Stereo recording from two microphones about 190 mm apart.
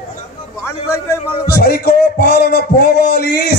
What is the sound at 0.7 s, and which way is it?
Speech, 15° left (ahead or behind).